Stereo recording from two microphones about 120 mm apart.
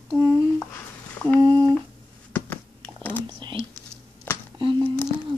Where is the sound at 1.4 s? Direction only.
45° right (ahead or behind).